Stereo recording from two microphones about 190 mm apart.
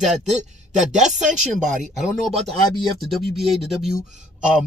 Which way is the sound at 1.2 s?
40° right (ahead or behind).